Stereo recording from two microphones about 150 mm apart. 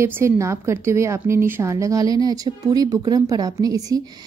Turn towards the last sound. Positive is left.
turn(degrees=-25)  # may be behind; listen again after turning